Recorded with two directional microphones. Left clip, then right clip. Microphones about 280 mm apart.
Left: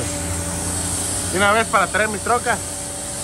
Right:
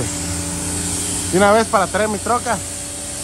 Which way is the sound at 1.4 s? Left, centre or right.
Right.